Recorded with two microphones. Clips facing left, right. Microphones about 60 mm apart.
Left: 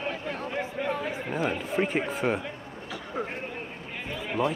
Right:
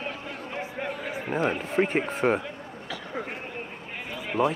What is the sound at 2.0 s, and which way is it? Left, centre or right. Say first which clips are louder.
Speech: right 3 dB; right.